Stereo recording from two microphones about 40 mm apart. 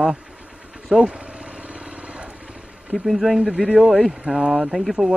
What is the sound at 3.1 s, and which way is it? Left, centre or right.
Speech, centre.